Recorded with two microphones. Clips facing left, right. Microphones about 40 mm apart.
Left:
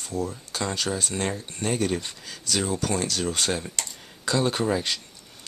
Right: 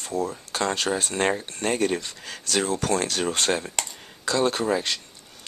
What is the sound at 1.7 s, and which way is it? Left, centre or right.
Speech, centre.